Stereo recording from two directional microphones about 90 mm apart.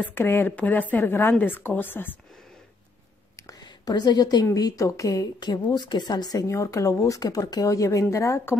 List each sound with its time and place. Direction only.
0.1 s a woman's voice: 25° left (ahead or behind)
3.3 s whispering: 40° left (ahead or behind)
3.6 s a woman's voice: 50° left (ahead or behind); by 8.5 s 35° left (ahead or behind)